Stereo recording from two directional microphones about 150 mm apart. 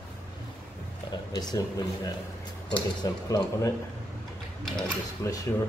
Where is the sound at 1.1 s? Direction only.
25° left (ahead or behind).